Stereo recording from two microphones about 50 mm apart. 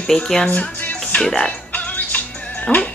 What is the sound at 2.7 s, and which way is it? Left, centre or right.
Speech, left.